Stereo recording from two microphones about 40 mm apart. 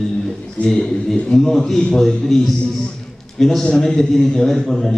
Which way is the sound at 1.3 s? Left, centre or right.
Centre.